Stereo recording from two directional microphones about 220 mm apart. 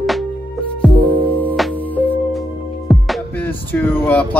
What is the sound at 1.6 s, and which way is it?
Music, centre (ahead or behind).